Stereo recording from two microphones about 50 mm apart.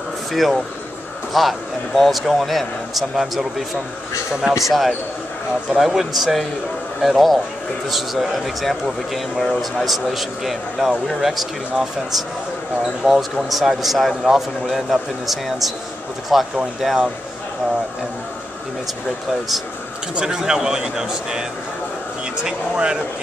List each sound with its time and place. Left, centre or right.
0.3 s a man's voice: centre
4.6 s a man's voice: centre
20.2 s a man's voice: centre